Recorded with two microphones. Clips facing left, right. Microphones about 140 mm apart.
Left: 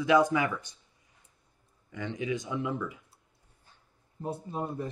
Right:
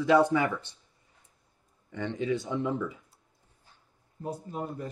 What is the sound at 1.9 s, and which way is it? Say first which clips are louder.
Speech: right 3 dB; 10° left (ahead or behind).